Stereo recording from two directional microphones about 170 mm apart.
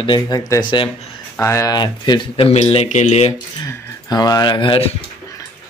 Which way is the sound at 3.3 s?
15° left (ahead or behind).